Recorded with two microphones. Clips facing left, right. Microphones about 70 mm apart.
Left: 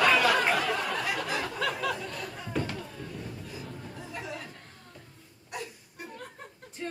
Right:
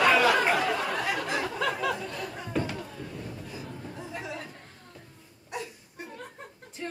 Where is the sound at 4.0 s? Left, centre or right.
Right.